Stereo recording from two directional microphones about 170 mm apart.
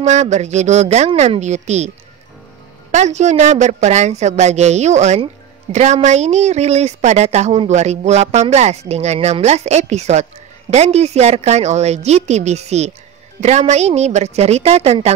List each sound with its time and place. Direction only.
0.0 s a woman's voice: 45° right (ahead or behind)
2.9 s a woman's voice: 45° right (ahead or behind)